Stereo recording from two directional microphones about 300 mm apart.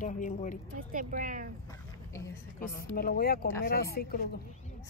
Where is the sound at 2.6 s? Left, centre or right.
Left.